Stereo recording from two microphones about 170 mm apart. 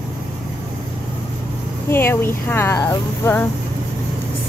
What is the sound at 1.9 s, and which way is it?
Speech, 15° left (ahead or behind).